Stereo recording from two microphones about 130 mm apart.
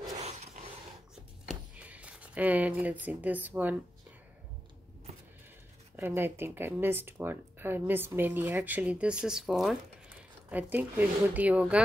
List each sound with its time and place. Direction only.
1.5 s speech: 10° right (ahead or behind)
5.9 s speech: 15° right (ahead or behind); by 9.8 s centre (ahead or behind)
10.5 s speech: 15° right (ahead or behind)